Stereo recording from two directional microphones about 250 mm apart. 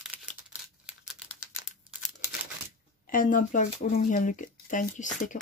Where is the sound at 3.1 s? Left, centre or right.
Left.